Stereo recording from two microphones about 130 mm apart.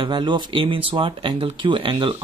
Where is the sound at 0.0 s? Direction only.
35° right (ahead or behind).